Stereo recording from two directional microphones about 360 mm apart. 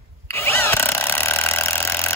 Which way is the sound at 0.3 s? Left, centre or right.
Centre.